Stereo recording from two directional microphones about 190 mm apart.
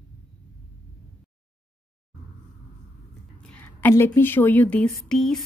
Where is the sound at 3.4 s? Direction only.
10° left (ahead or behind).